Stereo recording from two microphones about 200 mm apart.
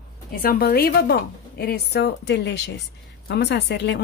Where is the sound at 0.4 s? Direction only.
45° left (ahead or behind).